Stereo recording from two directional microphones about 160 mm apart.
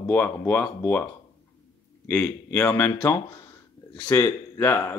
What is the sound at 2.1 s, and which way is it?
Speech, 10° left (ahead or behind).